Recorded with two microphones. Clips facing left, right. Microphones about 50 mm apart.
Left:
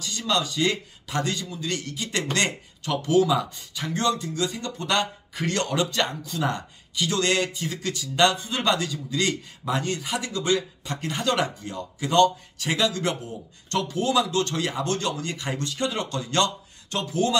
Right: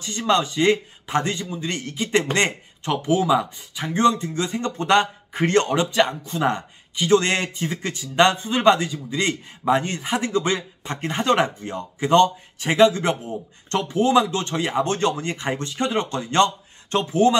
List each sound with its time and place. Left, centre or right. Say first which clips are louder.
0.0 s speech: right 5 dB; right